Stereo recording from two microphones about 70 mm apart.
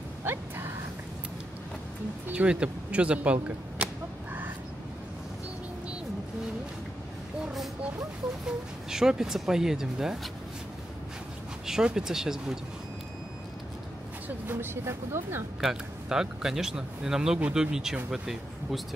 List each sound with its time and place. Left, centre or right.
0.2 s a sound: right
2.3 s speech: centre
8.9 s speech: centre
11.6 s speech: centre
14.5 s speech: right
15.6 s speech: centre